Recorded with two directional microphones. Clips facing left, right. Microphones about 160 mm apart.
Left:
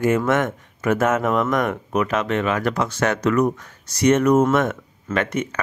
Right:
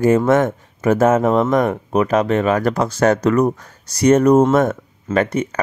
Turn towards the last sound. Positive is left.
turn(degrees=-35)  # may be behind; listen again after turning